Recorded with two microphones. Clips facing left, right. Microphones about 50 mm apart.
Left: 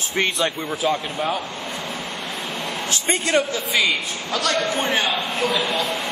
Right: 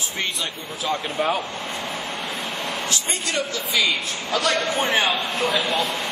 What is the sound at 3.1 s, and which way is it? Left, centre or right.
Speech, left.